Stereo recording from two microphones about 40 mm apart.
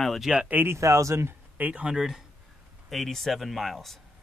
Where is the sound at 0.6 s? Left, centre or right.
Right.